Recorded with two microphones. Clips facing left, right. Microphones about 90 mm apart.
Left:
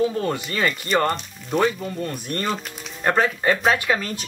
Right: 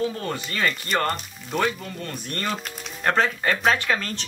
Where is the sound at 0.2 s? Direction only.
20° left (ahead or behind).